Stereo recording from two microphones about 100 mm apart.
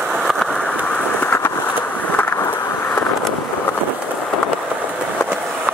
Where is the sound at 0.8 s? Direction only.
15° left (ahead or behind).